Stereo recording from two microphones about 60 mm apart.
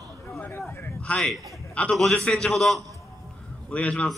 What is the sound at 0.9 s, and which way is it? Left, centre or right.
A man's voice, left.